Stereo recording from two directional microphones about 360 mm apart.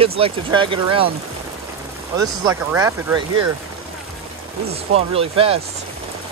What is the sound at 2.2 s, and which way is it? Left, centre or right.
Speech, centre.